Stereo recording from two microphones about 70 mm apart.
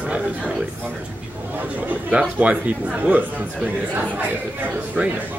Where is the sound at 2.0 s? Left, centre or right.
Centre.